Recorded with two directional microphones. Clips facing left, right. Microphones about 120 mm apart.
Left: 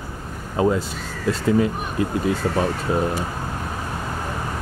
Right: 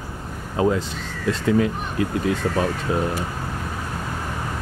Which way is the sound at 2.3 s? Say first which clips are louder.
Left 1 dB; 30° left (ahead or behind).